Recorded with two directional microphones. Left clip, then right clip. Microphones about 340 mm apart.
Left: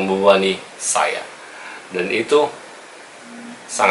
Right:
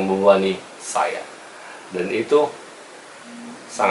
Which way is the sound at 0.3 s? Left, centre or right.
Centre.